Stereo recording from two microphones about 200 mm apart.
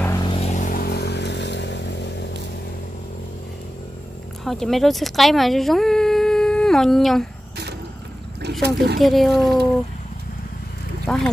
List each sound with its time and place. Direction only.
0.0 s vehicle: 15° left (ahead or behind)
0.3 s vehicle: 35° left (ahead or behind); by 2.2 s 60° left (ahead or behind)
4.5 s speech: centre (ahead or behind)
8.6 s speech: 50° right (ahead or behind)
9.0 s speech: centre (ahead or behind)
11.1 s speech: 5° left (ahead or behind)